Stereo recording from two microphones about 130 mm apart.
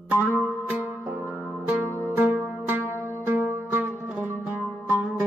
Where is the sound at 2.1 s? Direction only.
15° right (ahead or behind).